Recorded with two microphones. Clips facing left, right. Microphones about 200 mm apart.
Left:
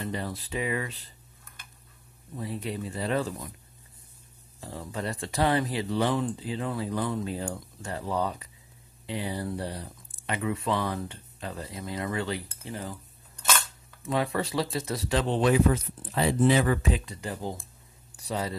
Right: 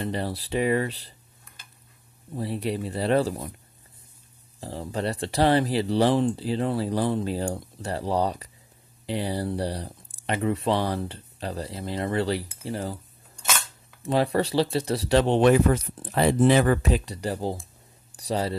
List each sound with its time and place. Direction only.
0.1 s speech: 35° right (ahead or behind)
2.6 s speech: 35° right (ahead or behind)
4.6 s speech: 35° right (ahead or behind)
14.0 s speech: 35° right (ahead or behind)
15.1 s speech: 70° right (ahead or behind); by 17.0 s 50° right (ahead or behind)
17.1 s speech: 35° right (ahead or behind)